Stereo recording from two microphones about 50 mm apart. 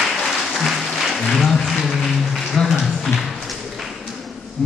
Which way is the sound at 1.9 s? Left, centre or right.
Centre.